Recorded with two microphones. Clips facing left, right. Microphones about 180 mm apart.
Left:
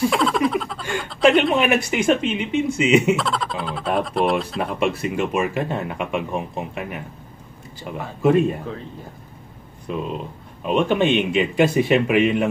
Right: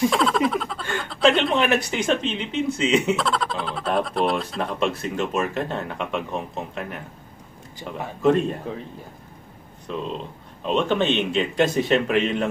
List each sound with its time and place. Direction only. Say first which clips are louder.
0.1 s a sound: left 1 dB; centre (ahead or behind)
1.3 s speech: left 3 dB; 10° left (ahead or behind)
3.2 s speech: even; centre (ahead or behind)
8.2 s speech: left 2 dB; 10° left (ahead or behind)
9.8 s speech: left 2 dB; 10° left (ahead or behind)